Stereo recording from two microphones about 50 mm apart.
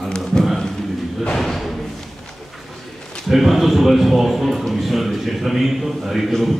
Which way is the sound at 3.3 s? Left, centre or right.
Centre.